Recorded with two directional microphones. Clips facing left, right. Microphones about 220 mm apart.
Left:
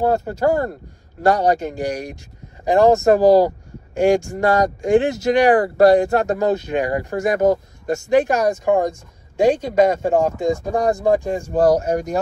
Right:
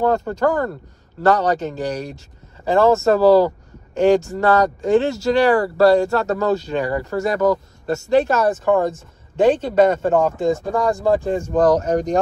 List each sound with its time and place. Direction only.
0.0 s speech: 10° left (ahead or behind)